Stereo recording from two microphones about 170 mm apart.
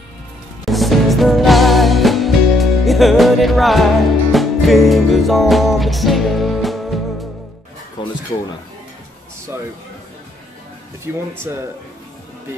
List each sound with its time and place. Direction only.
0.7 s music: centre (ahead or behind)
8.0 s a sound: 30° left (ahead or behind)
11.5 s speech: 15° right (ahead or behind)